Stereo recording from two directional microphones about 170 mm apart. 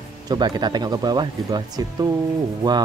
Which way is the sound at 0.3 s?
25° right (ahead or behind).